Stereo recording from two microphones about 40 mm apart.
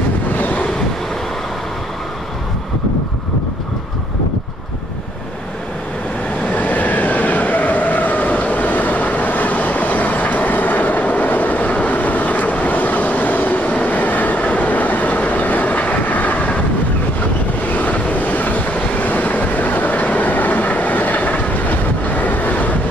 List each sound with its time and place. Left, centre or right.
0.4 s wind noise: left
6.4 s vehicle: left
17.6 s train: left